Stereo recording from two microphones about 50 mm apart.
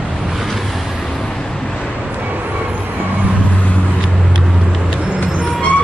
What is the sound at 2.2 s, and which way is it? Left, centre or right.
Music, right.